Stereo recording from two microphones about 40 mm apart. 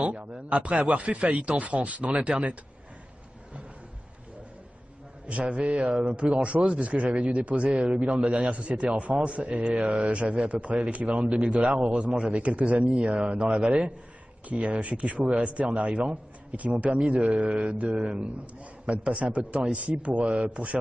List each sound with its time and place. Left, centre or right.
0.0 s a man's voice: right
2.2 s a man's voice: right
5.2 s a man's voice: right
10.1 s a man's voice: right
15.3 s a man's voice: right